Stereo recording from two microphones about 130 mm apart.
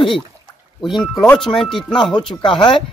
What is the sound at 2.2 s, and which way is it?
Speech, 40° left (ahead or behind).